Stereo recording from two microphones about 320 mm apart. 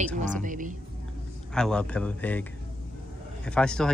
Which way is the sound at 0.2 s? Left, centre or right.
Right.